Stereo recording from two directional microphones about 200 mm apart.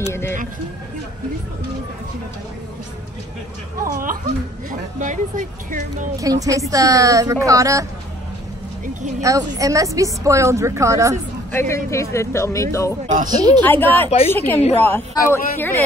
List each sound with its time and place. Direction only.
0.1 s speech: 10° left (ahead or behind)
3.8 s speech: 45° right (ahead or behind)
6.1 s speech: 15° right (ahead or behind)
9.2 s speech: 15° right (ahead or behind)
11.5 s speech: 15° left (ahead or behind)
13.0 s speech: 40° right (ahead or behind)
13.3 s speech: 20° right (ahead or behind)
13.7 s speech: 10° left (ahead or behind)